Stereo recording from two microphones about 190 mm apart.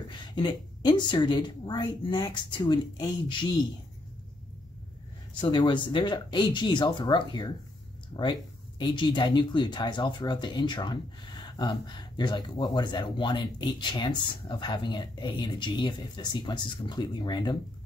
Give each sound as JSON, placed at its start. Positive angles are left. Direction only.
{"t": 0.4, "sound": "speech", "side_deg": 25}
{"t": 5.4, "sound": "speech", "side_deg": 25}